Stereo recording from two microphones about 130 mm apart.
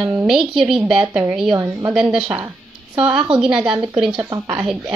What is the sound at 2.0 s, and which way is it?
A woman's voice, 5° right (ahead or behind).